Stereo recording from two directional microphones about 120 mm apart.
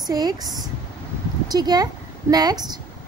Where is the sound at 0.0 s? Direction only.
35° right (ahead or behind).